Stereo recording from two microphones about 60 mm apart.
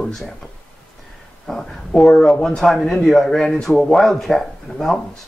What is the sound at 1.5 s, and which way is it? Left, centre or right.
Speech, centre.